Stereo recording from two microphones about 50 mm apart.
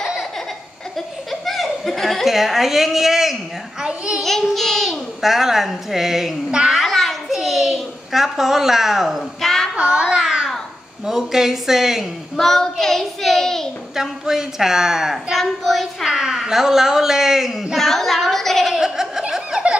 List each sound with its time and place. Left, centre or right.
0.9 s speech: centre
3.8 s a child's voice: centre
4.2 s a child's voice: centre
6.5 s a sound: centre
6.9 s a sound: centre
9.8 s a sound: centre
11.1 s a woman's voice: centre
12.4 s child singing: centre
13.9 s a woman's voice: centre
15.3 s a child's voice: centre
16.1 s speech: centre
17.7 s a sound: centre
18.7 s snicker: centre
19.5 s laughter: centre